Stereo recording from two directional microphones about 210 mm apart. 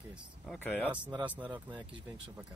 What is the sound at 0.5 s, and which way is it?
Speech, 5° left (ahead or behind).